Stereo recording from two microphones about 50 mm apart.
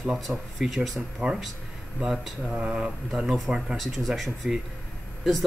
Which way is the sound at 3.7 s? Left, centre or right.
Centre.